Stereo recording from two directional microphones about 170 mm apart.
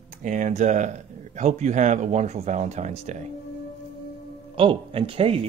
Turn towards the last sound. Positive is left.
turn(degrees=-30)  # may be behind; listen again after turning